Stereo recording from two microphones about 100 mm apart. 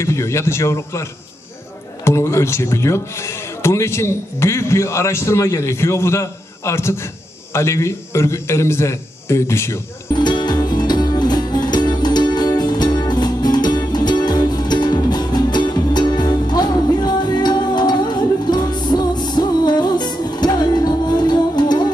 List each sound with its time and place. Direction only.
0.0 s speech: 30° left (ahead or behind)
2.0 s speech: 30° left (ahead or behind)
10.1 s music: 45° left (ahead or behind)